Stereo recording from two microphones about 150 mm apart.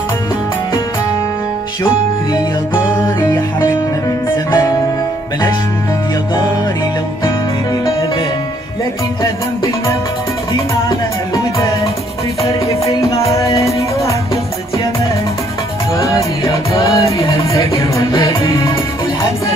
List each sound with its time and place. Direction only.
3.2 s music: 15° left (ahead or behind)
10.9 s music: 20° left (ahead or behind)
13.1 s music: 40° left (ahead or behind)
16.9 s music: 20° left (ahead or behind)